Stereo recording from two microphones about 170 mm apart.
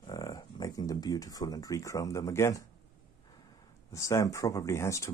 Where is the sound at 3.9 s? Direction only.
20° left (ahead or behind).